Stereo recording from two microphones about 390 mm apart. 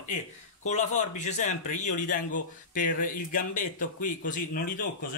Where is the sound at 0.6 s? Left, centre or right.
Centre.